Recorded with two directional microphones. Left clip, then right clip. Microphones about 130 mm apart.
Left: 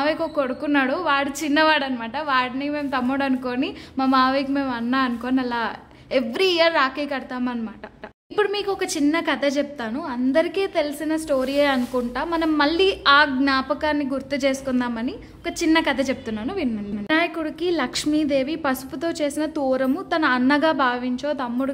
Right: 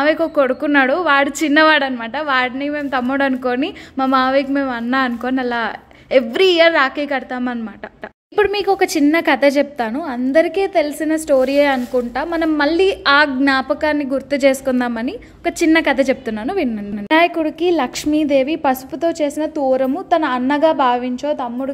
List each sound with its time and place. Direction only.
0.0 s a woman's voice: 30° right (ahead or behind)
10.3 s a woman's voice: 20° right (ahead or behind)
11.0 s a woman's voice: 35° right (ahead or behind)
17.4 s a woman's voice: 20° right (ahead or behind)
21.4 s a woman's voice: 5° right (ahead or behind)